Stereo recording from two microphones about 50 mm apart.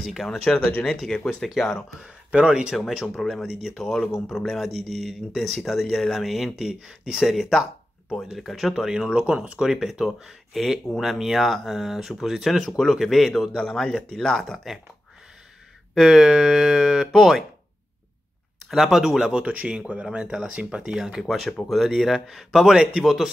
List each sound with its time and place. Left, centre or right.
0.0 s speech: centre
2.3 s speech: right
3.2 s speech: centre
3.8 s speech: centre
15.9 s speech: centre
18.7 s speech: centre
19.3 s speech: right; by 23.3 s centre